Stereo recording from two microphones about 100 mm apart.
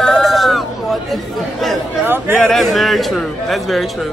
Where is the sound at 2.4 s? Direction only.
5° left (ahead or behind).